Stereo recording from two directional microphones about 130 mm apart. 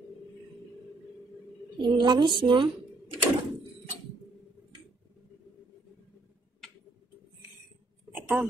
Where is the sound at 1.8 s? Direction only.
35° right (ahead or behind).